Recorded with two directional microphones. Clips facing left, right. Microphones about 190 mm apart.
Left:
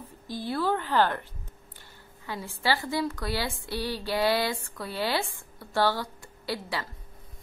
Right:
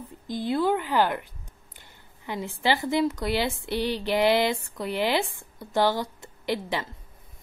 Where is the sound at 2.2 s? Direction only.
20° right (ahead or behind).